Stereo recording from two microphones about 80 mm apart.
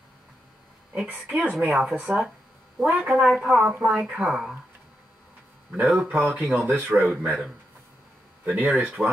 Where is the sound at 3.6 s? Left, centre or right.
Centre.